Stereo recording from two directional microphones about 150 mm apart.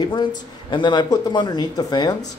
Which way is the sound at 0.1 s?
30° left (ahead or behind).